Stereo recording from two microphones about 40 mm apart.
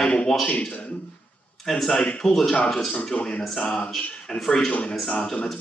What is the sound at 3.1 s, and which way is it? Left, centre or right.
Speech, left.